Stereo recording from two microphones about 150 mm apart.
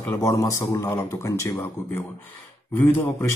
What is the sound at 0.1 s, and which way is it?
Speech, 20° left (ahead or behind).